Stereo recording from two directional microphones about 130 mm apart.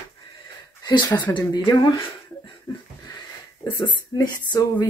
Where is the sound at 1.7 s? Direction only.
40° left (ahead or behind).